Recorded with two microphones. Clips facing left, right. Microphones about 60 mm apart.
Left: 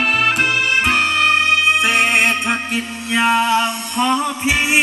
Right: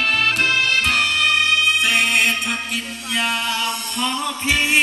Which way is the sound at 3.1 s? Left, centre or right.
Left.